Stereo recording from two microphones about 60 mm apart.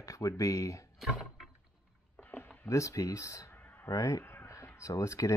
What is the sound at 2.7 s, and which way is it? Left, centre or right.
Speech, left.